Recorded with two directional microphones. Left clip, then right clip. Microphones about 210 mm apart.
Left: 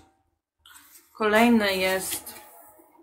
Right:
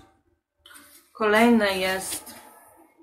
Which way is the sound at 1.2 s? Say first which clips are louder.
Right 1 dB; 30° left (ahead or behind).